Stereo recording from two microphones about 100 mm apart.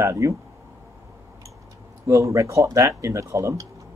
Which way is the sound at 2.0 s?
30° right (ahead or behind).